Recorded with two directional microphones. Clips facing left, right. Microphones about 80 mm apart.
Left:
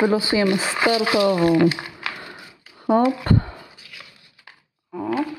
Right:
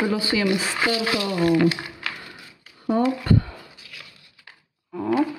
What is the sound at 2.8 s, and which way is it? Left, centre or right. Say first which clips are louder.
Speech: left 4 dB; left.